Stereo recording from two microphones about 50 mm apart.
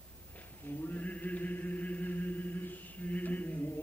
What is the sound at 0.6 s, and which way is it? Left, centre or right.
Chant, left.